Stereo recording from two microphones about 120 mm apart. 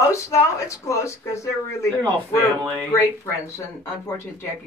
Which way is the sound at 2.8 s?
25° left (ahead or behind).